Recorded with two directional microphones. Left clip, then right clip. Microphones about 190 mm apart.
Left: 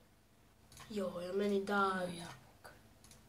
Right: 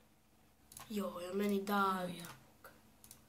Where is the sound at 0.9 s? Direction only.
15° right (ahead or behind).